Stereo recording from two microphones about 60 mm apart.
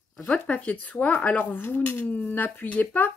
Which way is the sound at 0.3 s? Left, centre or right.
Left.